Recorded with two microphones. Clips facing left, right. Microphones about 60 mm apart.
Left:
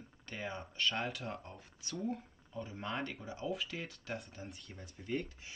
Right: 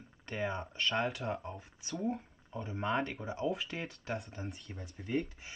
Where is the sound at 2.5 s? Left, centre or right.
Right.